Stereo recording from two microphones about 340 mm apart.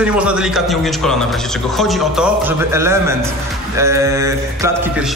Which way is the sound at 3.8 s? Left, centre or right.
Centre.